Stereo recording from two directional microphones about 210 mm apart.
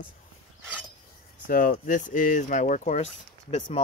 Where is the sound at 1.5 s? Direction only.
40° left (ahead or behind).